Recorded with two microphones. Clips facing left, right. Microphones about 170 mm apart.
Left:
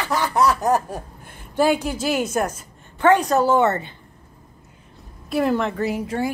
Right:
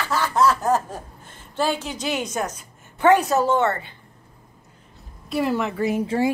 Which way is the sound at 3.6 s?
20° left (ahead or behind).